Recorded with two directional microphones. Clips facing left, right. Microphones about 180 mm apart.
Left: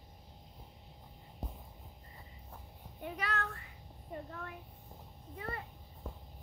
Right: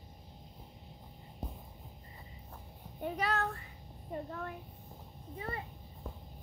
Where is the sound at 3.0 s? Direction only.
35° right (ahead or behind).